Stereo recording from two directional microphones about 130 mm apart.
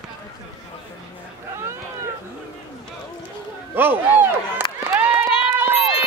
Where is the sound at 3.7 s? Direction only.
15° right (ahead or behind).